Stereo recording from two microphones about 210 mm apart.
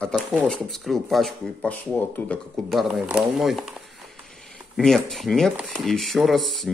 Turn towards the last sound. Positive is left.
turn(degrees=0)  # may be behind; listen again after turning